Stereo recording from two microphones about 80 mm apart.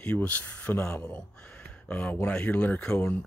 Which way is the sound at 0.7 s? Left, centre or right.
Left.